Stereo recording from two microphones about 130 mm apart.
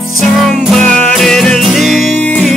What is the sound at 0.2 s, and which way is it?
Music, centre (ahead or behind).